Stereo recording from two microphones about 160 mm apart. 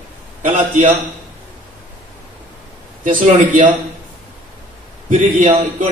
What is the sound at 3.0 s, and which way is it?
Speech, 55° right (ahead or behind).